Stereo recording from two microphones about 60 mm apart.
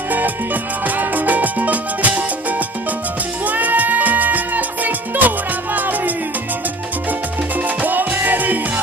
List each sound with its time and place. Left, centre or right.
0.8 s music: right
3.4 s music: right
7.6 s music: right